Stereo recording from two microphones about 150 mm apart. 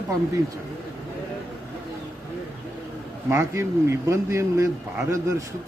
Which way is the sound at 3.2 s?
20° right (ahead or behind).